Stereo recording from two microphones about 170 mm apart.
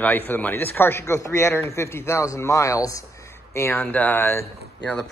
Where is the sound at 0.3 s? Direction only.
10° left (ahead or behind).